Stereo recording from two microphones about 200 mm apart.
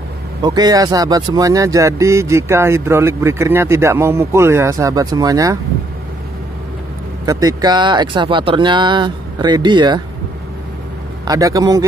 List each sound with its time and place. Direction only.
0.4 s speech: 20° right (ahead or behind)
7.2 s speech: 20° right (ahead or behind)
11.2 s speech: 15° right (ahead or behind)